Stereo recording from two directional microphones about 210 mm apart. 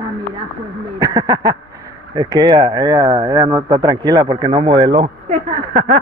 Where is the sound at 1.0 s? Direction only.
20° right (ahead or behind).